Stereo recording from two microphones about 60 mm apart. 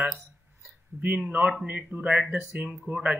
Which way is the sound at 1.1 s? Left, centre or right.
Centre.